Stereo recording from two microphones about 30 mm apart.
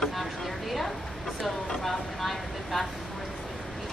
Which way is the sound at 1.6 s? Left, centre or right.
Centre.